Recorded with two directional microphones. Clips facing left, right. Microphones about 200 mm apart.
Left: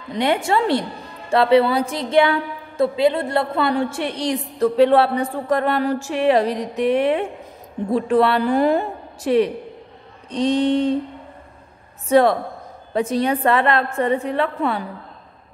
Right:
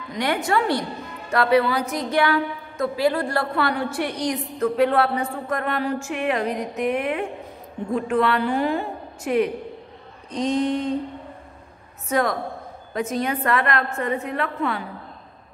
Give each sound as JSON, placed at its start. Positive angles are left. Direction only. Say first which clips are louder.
{"t": 0.1, "sound": "a woman's voice", "louder": "left 3 dB", "side_deg": 25}
{"t": 12.1, "sound": "a woman's voice", "louder": "left 7 dB", "side_deg": 30}